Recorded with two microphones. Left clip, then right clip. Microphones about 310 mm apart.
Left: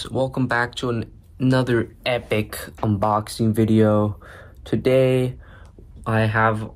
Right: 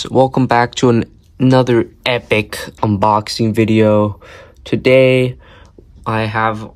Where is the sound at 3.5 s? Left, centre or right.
Right.